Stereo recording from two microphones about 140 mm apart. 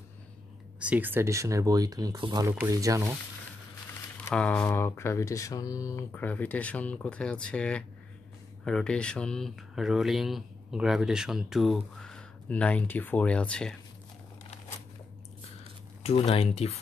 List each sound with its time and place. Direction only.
0.7 s speech: 10° right (ahead or behind); by 2.4 s 30° right (ahead or behind)
2.4 s speech: 15° right (ahead or behind)
4.3 s speech: 10° left (ahead or behind)
16.0 s speech: 45° left (ahead or behind)